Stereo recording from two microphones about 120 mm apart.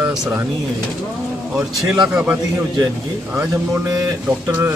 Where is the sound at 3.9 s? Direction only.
30° right (ahead or behind).